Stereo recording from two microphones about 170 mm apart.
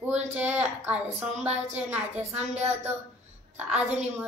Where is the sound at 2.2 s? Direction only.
40° right (ahead or behind).